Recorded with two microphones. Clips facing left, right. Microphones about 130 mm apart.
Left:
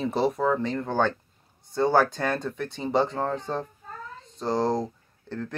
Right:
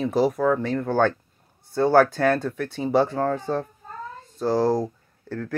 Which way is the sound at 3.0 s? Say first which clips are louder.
Right 4 dB; 20° left (ahead or behind).